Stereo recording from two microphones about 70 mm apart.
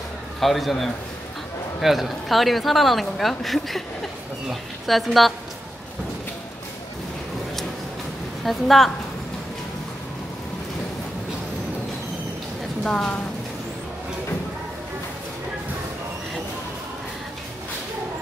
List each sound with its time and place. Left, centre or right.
0.4 s speech: centre
8.5 s speech: centre
12.8 s speech: centre